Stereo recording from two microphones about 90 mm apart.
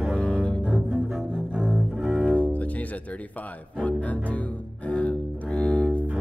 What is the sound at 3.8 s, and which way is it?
Music, 15° left (ahead or behind).